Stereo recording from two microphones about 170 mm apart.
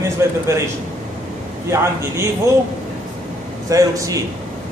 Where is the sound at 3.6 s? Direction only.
20° right (ahead or behind).